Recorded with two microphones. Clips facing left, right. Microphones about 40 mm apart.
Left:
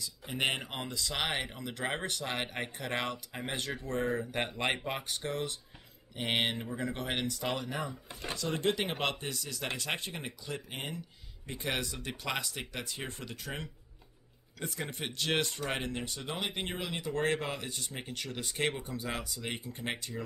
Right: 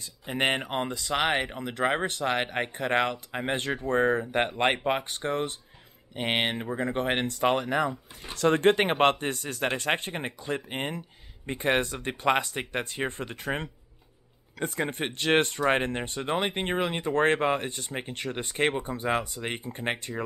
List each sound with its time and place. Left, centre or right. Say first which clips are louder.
0.0 s speech: right 5 dB; right